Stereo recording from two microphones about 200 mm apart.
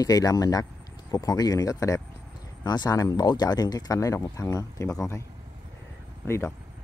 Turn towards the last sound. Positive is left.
turn(degrees=15)  # may be behind; listen again after turning